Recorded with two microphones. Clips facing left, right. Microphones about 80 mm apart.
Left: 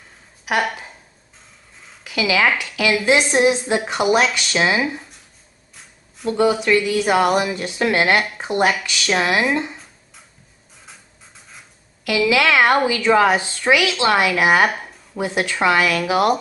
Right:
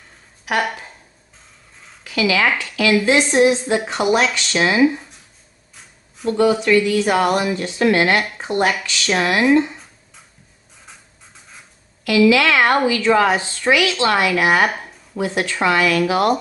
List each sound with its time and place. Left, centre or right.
2.0 s speech: centre
5.8 s a sound: centre
6.3 s speech: centre
10.9 s writing: centre
12.3 s speech: centre
14.7 s a sound: centre
15.1 s speech: centre